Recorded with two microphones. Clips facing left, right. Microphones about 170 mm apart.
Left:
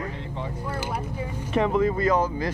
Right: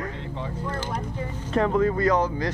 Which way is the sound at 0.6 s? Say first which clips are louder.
Even; 10° left (ahead or behind).